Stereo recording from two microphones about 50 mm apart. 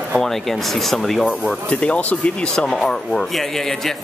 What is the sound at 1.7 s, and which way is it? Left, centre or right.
Speech, left.